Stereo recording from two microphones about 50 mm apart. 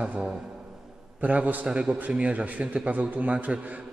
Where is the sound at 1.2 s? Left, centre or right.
Right.